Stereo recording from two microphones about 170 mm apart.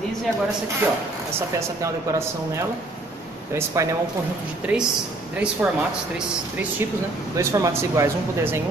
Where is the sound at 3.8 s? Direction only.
15° right (ahead or behind).